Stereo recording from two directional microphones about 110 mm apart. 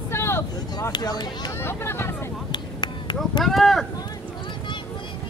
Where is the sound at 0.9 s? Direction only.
40° left (ahead or behind).